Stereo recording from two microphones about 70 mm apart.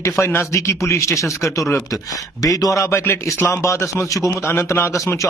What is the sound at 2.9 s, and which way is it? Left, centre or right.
A man's voice, left.